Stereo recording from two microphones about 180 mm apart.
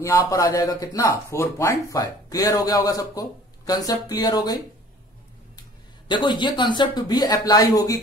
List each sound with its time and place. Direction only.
0.0 s speech: 15° left (ahead or behind)
6.0 s speech: 25° left (ahead or behind)